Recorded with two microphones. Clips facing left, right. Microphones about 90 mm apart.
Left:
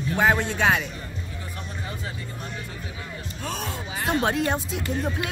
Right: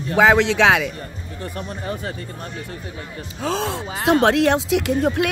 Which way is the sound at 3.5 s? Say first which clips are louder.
Right 8 dB; 90° right.